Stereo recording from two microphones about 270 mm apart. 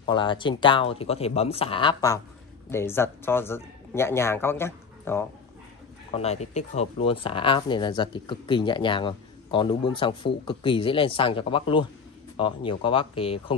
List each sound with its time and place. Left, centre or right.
0.0 s speech: centre
6.1 s speech: left